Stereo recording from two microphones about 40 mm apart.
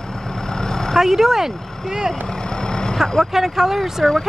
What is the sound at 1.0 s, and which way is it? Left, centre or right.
Speech, centre.